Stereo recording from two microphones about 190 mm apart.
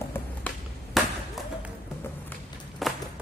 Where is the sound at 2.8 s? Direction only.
Centre (ahead or behind).